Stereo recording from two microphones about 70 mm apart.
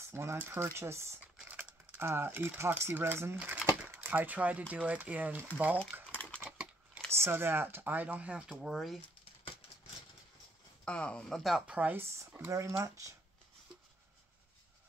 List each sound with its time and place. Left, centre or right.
0.0 s speech: right
1.4 s crumpling: centre
2.8 s speech: right
3.3 s a sound: centre
3.9 s speech: right
6.4 s crumpling: centre
7.1 s speech: right; by 8.5 s centre
8.5 s speech: centre
10.9 s speech: centre
11.4 s speech: centre
11.7 s speech: right
12.0 s speech: right